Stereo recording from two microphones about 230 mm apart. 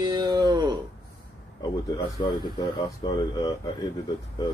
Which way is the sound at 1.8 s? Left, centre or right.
Centre.